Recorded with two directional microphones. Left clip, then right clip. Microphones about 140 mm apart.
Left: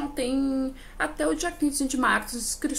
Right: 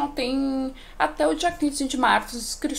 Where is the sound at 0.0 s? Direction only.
40° left (ahead or behind).